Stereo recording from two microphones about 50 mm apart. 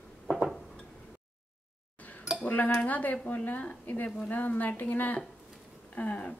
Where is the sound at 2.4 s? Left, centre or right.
Left.